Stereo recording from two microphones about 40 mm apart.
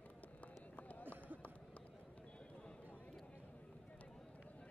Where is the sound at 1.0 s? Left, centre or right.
Right.